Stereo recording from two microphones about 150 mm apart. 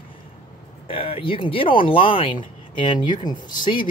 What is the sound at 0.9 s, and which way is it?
Speech, 40° left (ahead or behind).